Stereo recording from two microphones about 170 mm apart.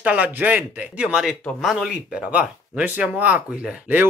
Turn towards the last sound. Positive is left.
turn(degrees=-10)  # may be behind; listen again after turning